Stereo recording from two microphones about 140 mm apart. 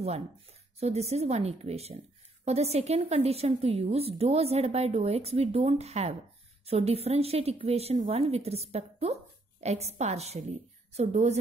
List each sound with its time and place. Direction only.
0.7 s a woman's voice: 50° right (ahead or behind)